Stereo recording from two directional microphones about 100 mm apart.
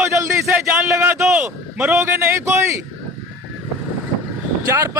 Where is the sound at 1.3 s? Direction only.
15° right (ahead or behind).